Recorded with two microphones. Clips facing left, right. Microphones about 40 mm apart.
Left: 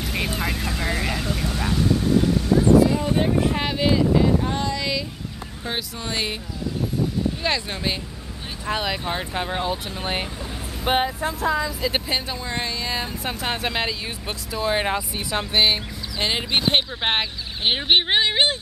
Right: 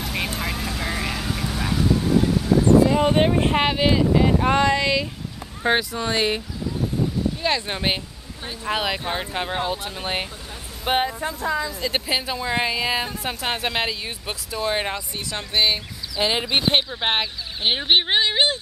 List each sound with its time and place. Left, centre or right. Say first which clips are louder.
0.0 s vehicle: left 1 dB; centre
3.0 s speech: right 3 dB; right
3.6 s speech: right 1 dB; centre
4.5 s speech: right 7 dB; right
5.6 s speech: right 9 dB; right
7.6 s speech: right 2 dB; right
8.6 s speech: right 1 dB; centre
12.5 s music: right 4 dB; centre
13.2 s speech: even; centre
16.3 s speech: even; centre